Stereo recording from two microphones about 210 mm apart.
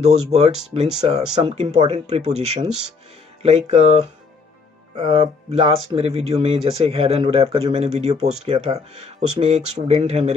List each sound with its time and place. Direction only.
0.3 s speech: 30° right (ahead or behind)